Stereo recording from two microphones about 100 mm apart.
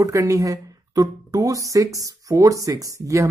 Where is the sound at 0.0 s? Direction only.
35° right (ahead or behind).